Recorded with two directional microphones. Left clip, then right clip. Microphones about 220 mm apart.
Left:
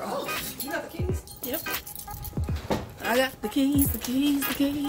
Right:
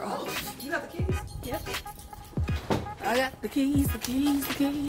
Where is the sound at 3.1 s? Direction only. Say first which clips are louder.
Left 3 dB; centre (ahead or behind).